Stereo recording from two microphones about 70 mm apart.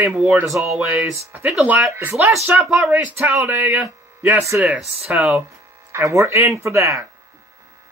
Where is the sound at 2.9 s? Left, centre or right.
Right.